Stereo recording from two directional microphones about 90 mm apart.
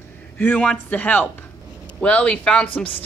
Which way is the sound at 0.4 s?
15° left (ahead or behind).